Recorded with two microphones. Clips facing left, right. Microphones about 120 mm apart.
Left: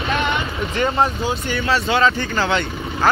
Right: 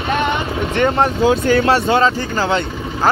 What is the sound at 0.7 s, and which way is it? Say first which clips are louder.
Speech: right 4 dB; 60° right (ahead or behind).